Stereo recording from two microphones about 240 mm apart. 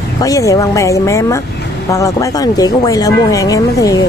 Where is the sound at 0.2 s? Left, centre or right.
Centre.